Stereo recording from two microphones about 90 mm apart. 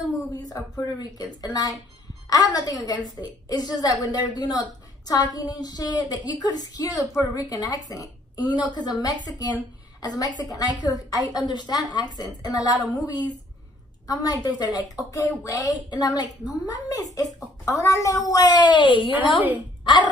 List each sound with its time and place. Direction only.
0.4 s a sound: 45° left (ahead or behind)
0.9 s a woman's voice: 50° left (ahead or behind)
15.9 s a woman's voice: 50° left (ahead or behind)